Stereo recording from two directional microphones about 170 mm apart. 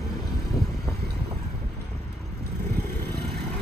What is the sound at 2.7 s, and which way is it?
Vehicle, 70° right (ahead or behind).